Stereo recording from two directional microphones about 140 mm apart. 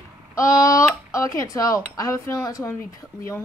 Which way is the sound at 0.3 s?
20° left (ahead or behind).